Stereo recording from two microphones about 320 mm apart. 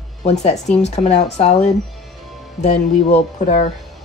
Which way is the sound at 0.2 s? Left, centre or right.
Left.